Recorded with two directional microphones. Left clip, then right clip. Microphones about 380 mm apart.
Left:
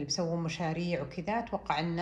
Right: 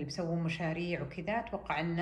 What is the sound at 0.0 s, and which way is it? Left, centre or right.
Speech, centre.